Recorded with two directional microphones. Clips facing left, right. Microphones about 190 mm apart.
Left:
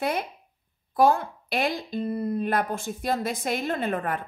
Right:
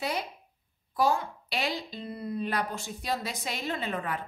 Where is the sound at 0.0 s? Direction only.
55° left (ahead or behind).